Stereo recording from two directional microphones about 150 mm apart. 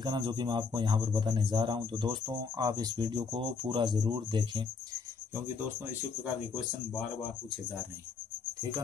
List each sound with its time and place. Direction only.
0.0 s speech: 30° right (ahead or behind)